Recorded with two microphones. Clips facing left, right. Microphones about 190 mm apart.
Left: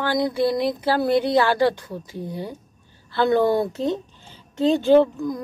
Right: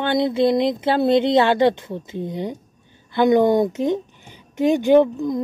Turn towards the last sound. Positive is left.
turn(degrees=-20)  # may be behind; listen again after turning